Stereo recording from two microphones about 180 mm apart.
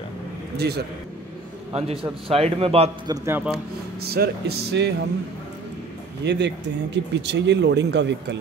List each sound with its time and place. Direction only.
0.6 s speech: 65° right (ahead or behind)
2.2 s a man's voice: 30° right (ahead or behind)
3.1 s a man's voice: 10° right (ahead or behind)
4.0 s speech: 60° right (ahead or behind)
6.2 s speech: 70° right (ahead or behind)